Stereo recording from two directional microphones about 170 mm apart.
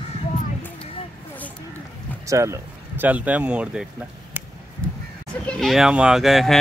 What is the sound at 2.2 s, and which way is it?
Speech, 15° right (ahead or behind).